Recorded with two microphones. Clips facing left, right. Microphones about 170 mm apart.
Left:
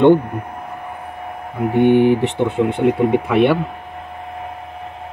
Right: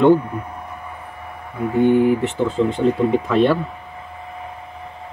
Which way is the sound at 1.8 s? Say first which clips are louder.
Left 2 dB; 80° left.